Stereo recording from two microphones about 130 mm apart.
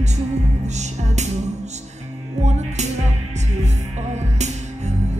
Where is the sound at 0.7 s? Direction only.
60° right (ahead or behind).